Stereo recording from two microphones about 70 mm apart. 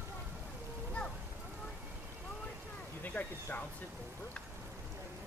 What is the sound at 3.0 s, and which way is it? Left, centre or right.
Speech, left.